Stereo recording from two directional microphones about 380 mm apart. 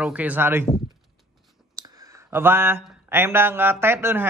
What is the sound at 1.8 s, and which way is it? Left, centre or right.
Speech, centre.